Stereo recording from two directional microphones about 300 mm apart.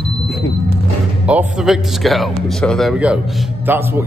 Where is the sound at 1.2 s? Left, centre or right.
Centre.